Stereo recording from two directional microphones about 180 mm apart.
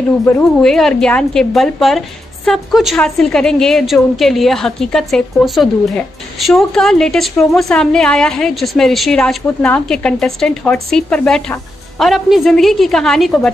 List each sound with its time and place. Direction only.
0.4 s a woman's voice: centre (ahead or behind)